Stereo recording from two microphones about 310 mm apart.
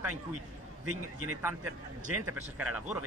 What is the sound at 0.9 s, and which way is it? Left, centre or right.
Speech, right.